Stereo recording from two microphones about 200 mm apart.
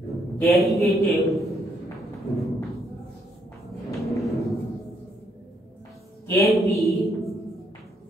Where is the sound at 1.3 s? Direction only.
Centre (ahead or behind).